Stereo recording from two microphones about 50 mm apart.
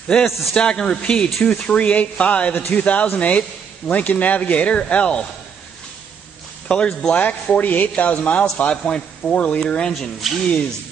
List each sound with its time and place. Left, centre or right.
0.1 s speech: centre
6.7 s speech: centre
9.6 s speech: centre
10.2 s speech: centre